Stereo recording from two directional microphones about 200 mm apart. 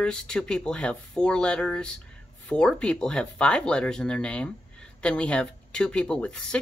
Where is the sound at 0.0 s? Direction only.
5° left (ahead or behind).